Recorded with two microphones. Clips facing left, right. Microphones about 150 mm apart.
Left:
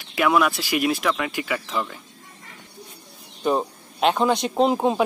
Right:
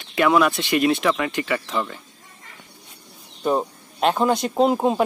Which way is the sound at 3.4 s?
Centre (ahead or behind).